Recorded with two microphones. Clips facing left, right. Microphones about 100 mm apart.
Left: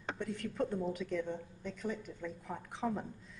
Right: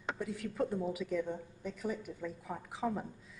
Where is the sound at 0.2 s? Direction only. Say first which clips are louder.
Even; 5° right (ahead or behind).